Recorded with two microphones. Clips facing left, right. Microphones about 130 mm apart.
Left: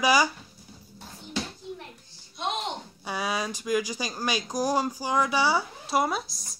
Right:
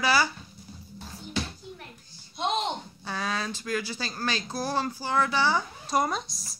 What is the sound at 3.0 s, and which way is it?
Speech, 10° left (ahead or behind).